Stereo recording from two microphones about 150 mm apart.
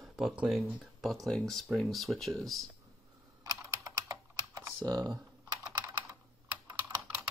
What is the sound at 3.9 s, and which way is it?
Typing, 25° right (ahead or behind).